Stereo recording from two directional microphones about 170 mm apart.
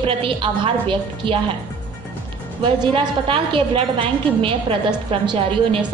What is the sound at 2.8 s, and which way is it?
A woman's voice, 30° right (ahead or behind).